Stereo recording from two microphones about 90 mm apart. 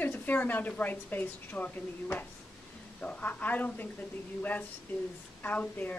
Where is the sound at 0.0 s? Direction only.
20° left (ahead or behind).